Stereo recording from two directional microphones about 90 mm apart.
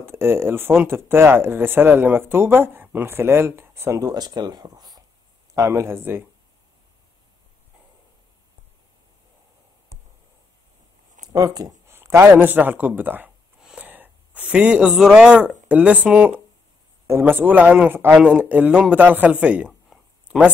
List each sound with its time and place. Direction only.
0.0 s speech: 25° right (ahead or behind)
4.0 s speech: 45° right (ahead or behind)
5.5 s speech: 35° right (ahead or behind)
11.3 s speech: 40° right (ahead or behind)
11.9 s speech: 30° right (ahead or behind)
13.6 s gasp: 10° right (ahead or behind)
13.8 s a woman's voice: 20° right (ahead or behind)
19.9 s a sound: 10° right (ahead or behind)